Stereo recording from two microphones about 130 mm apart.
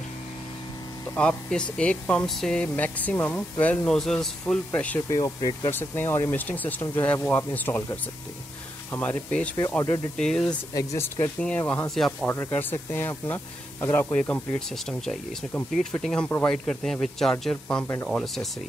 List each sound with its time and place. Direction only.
1.1 s speech: 5° left (ahead or behind)
5.1 s speech: 30° left (ahead or behind)
5.7 s speech: 15° left (ahead or behind)
10.7 s speech: 25° left (ahead or behind)
11.4 s speech: 10° left (ahead or behind)
12.3 s speech: 15° left (ahead or behind)
16.6 s speech: 5° left (ahead or behind)